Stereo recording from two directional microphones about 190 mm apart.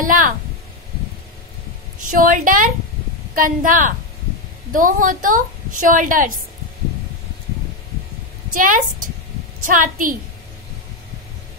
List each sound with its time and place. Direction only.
0.0 s a sound: 45° right (ahead or behind)
2.0 s a woman's voice: 45° right (ahead or behind)
8.5 s a woman's voice: 45° right (ahead or behind)